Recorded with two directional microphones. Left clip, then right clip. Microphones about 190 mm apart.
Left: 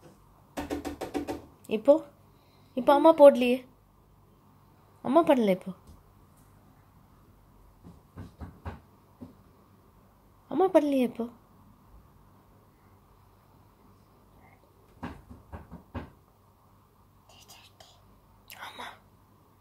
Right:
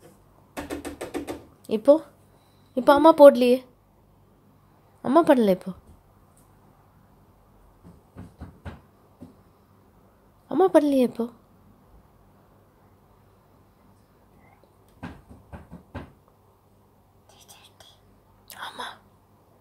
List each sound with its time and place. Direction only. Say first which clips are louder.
1.7 s a woman's voice: right 4 dB; 20° right (ahead or behind)
5.0 s a woman's voice: right 4 dB; 25° right (ahead or behind)
10.5 s a woman's voice: right 5 dB; 25° right (ahead or behind)
18.5 s whispering: right 6 dB; 20° right (ahead or behind)